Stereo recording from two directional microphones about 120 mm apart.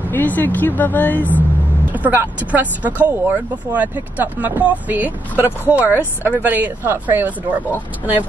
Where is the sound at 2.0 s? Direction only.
15° right (ahead or behind).